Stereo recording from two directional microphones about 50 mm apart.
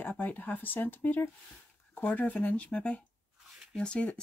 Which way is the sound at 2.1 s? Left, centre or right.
Left.